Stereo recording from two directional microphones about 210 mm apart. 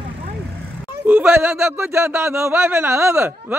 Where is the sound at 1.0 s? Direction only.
10° right (ahead or behind).